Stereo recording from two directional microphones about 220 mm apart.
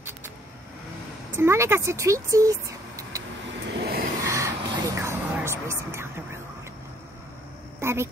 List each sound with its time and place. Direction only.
1.3 s speech: 10° right (ahead or behind)
3.0 s vehicle: 15° right (ahead or behind)
3.7 s vehicle: 45° right (ahead or behind)
4.3 s vehicle: 15° right (ahead or behind)
7.8 s speech: 10° right (ahead or behind)